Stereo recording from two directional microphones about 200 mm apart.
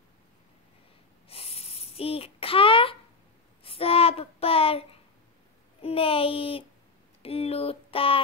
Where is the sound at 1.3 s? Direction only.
30° left (ahead or behind).